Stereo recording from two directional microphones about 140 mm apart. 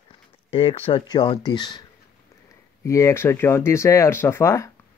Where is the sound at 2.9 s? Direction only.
20° left (ahead or behind).